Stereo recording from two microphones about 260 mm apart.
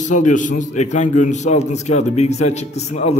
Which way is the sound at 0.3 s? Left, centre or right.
Left.